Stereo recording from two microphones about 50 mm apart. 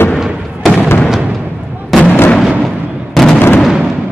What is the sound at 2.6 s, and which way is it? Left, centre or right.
Fireworks, centre.